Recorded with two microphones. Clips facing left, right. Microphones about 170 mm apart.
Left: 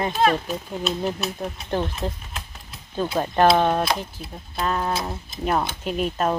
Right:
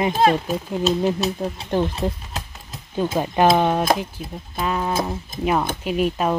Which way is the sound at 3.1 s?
10° right (ahead or behind).